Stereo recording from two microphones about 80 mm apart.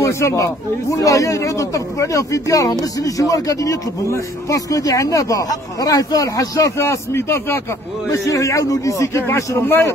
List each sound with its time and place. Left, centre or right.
0.0 s speech: left
6.8 s a man's voice: left
8.1 s a man's voice: left